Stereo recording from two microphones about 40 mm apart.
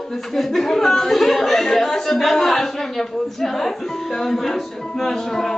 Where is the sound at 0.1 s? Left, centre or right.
Centre.